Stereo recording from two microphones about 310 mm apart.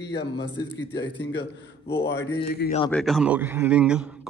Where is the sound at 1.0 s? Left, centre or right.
Centre.